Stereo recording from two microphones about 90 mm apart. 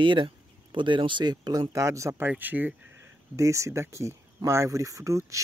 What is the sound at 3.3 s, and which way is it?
Speech, 35° right (ahead or behind).